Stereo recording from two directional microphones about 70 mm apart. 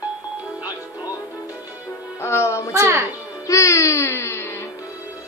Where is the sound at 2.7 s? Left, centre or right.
Right.